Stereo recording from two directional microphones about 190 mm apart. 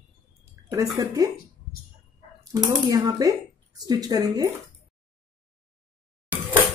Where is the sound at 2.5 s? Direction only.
20° right (ahead or behind).